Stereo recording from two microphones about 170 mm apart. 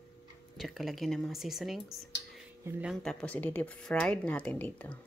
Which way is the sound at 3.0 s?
10° left (ahead or behind).